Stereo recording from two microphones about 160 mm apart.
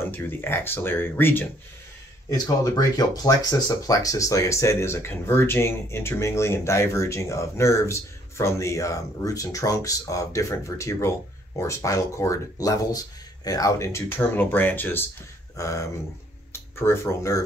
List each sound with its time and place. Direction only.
0.0 s speech: 15° left (ahead or behind)